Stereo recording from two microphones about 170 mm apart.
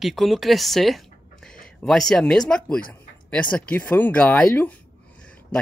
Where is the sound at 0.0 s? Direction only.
Centre (ahead or behind).